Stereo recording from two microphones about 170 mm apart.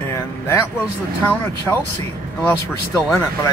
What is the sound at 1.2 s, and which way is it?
Speech, 10° left (ahead or behind).